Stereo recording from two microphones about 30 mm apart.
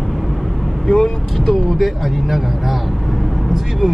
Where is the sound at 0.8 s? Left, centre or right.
Centre.